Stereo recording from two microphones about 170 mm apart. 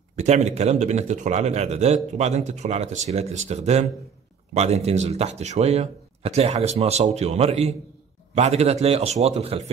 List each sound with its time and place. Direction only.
0.1 s speech: 45° right (ahead or behind)